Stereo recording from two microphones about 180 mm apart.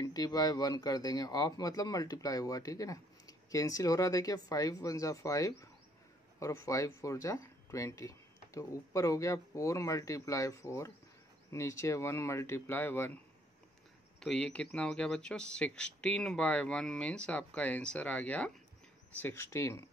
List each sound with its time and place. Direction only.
0.0 s speech: 20° left (ahead or behind)
14.2 s speech: 5° left (ahead or behind)